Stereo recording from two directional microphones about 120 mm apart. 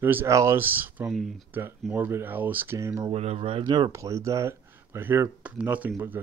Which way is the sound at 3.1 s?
60° right (ahead or behind).